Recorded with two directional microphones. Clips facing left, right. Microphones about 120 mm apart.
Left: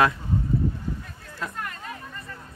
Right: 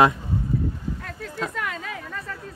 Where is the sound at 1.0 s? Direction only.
90° right.